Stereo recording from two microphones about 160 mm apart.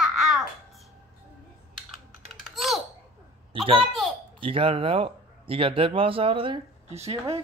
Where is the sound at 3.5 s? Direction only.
35° right (ahead or behind).